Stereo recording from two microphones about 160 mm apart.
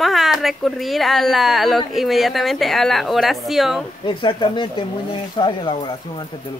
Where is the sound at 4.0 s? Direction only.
30° left (ahead or behind).